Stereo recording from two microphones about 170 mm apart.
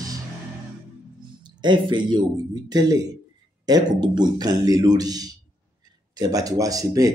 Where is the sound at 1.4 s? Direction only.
25° right (ahead or behind).